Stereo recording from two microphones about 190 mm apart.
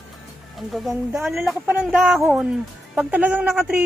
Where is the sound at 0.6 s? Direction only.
Centre (ahead or behind).